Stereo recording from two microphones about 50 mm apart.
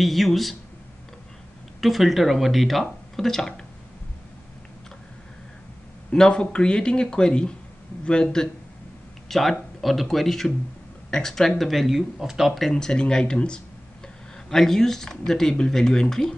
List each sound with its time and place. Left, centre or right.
0.0 s speech: centre
1.8 s speech: centre
6.1 s speech: centre
9.3 s speech: centre
12.6 s speech: centre